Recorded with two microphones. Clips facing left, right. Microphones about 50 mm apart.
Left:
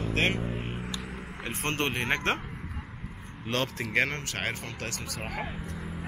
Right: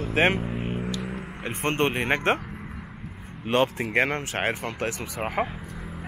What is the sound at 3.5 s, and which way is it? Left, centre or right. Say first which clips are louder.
Speech: right 7 dB; centre.